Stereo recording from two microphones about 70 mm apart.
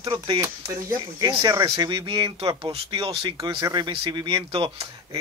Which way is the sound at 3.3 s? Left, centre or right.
Right.